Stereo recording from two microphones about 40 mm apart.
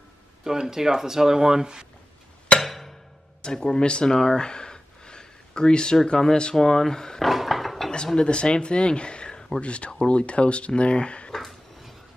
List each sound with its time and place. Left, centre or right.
0.4 s speech: centre
2.6 s music: centre
3.4 s speech: centre
4.4 s a sound: left
6.0 s speech: centre
7.2 s a sound: centre
8.2 s speech: left
9.6 s speech: left